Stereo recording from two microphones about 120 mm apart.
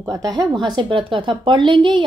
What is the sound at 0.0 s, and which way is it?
Speech, 25° right (ahead or behind).